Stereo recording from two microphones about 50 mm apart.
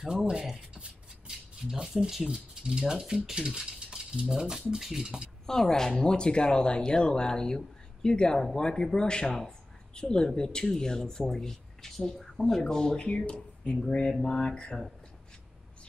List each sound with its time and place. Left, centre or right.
0.0 s speech: centre
5.5 s speech: centre